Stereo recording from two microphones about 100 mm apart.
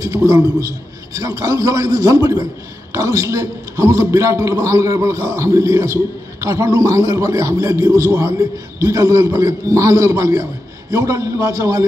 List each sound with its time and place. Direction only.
0.0 s a man's voice: 35° right (ahead or behind)